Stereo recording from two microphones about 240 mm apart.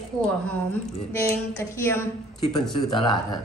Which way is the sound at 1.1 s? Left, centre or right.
Centre.